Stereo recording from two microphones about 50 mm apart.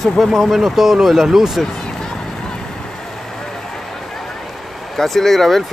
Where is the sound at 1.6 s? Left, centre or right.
Centre.